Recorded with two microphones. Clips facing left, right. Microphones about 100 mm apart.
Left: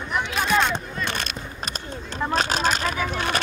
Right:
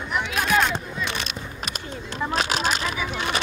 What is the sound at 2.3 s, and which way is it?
Speech, 40° left (ahead or behind).